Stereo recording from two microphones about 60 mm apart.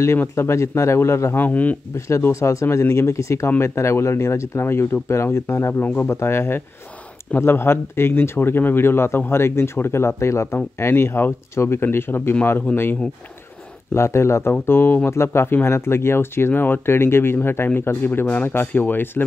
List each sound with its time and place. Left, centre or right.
0.2 s speech: left
1.4 s speech: left
2.0 s speech: left
3.4 s speech: left
13.9 s speech: left